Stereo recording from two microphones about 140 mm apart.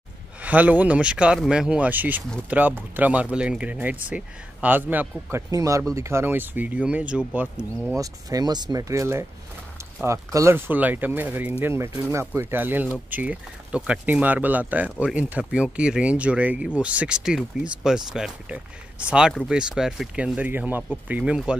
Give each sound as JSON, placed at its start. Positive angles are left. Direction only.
{"t": 0.4, "sound": "speech", "side_deg": -10}
{"t": 8.0, "sound": "speech", "side_deg": -25}